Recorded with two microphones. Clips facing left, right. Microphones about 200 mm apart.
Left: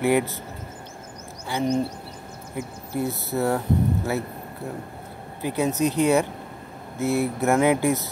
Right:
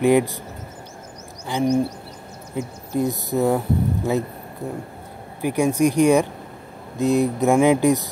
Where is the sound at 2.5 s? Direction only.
15° right (ahead or behind).